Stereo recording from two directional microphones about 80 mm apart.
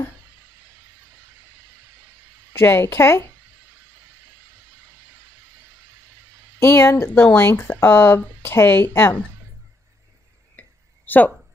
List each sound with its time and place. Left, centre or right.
2.5 s speech: left
6.6 s speech: left
10.6 s a sound: left
11.1 s speech: left